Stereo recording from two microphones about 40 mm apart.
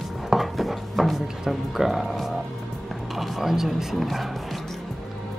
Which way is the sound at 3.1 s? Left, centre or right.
Centre.